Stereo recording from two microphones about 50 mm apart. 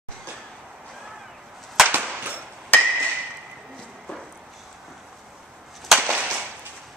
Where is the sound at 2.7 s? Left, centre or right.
Left.